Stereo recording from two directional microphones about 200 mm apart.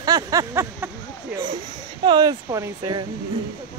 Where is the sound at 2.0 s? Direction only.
20° right (ahead or behind).